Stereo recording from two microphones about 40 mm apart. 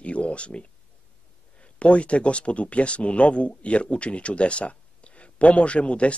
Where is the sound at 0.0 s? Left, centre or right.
Left.